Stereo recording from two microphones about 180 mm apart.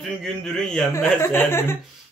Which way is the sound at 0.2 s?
Centre (ahead or behind).